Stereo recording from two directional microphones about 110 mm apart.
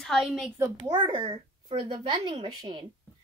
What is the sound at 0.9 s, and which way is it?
A child's voice, 45° right (ahead or behind).